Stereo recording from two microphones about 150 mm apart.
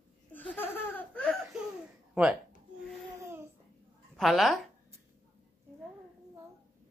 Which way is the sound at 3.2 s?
15° right (ahead or behind).